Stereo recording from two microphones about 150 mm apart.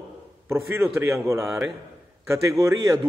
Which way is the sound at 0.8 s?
Centre (ahead or behind).